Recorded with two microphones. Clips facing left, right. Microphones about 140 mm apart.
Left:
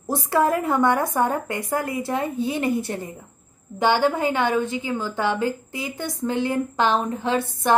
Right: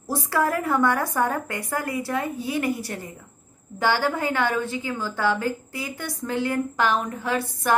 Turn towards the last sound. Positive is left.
turn(degrees=25)  # may be behind; listen again after turning